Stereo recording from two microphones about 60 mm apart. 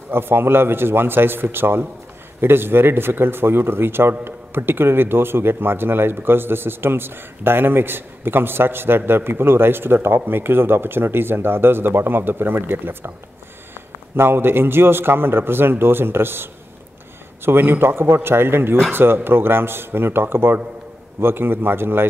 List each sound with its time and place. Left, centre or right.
0.1 s speech: right
17.5 s speech: right